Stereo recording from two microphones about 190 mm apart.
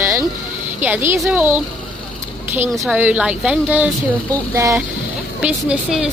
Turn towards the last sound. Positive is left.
turn(degrees=-5)  # may be behind; listen again after turning